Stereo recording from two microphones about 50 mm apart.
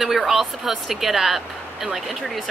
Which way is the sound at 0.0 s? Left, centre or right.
Centre.